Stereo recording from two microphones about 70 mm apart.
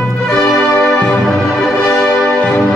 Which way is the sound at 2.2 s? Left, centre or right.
Centre.